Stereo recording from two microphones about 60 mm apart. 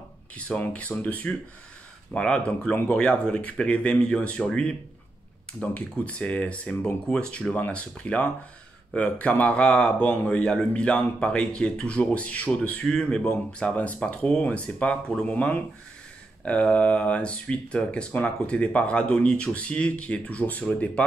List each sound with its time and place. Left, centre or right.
0.4 s speech: left
5.5 s speech: left